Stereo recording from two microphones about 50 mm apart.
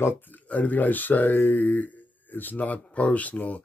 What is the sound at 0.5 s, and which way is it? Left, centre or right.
Speech, left.